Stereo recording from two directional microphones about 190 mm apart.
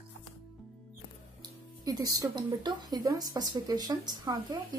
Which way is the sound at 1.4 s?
20° right (ahead or behind).